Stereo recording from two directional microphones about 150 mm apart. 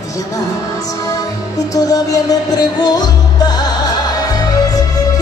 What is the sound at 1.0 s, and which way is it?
Music, 25° left (ahead or behind).